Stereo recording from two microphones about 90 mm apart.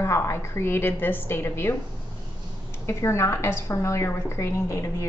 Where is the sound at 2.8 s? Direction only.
30° left (ahead or behind).